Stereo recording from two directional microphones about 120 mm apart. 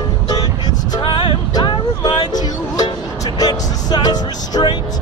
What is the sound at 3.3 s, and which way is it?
Speech, 35° left (ahead or behind).